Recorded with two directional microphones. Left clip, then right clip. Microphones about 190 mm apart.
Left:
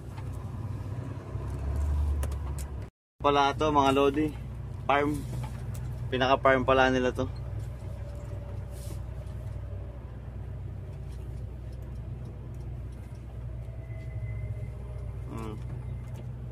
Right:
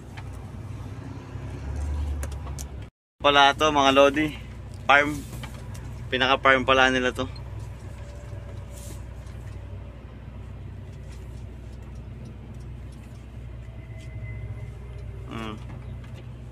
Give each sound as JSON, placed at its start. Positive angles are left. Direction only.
{"t": 3.2, "sound": "speech", "side_deg": 5}
{"t": 3.9, "sound": "speech", "side_deg": -5}
{"t": 4.8, "sound": "speech", "side_deg": 5}
{"t": 6.0, "sound": "speech", "side_deg": 20}